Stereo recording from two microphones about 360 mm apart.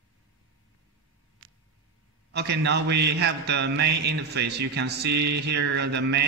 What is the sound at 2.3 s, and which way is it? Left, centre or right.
A man's voice, right.